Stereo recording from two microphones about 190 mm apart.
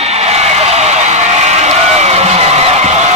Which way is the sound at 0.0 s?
35° right (ahead or behind).